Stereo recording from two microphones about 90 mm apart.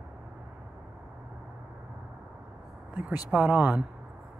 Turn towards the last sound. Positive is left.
turn(degrees=-20)  # may be behind; listen again after turning